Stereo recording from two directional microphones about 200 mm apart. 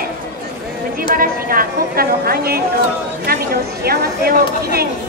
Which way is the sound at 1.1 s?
45° right (ahead or behind).